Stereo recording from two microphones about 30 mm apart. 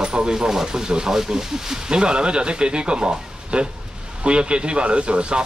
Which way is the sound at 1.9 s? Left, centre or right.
Right.